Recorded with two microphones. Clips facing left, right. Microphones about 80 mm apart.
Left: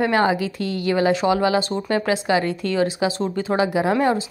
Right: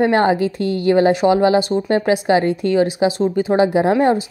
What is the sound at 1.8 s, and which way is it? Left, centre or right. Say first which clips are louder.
Speech: right 5 dB; right.